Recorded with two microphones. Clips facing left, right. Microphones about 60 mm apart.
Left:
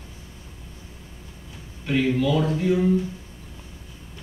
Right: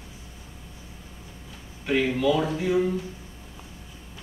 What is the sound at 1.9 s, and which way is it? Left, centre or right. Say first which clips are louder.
Speech: left 1 dB; centre.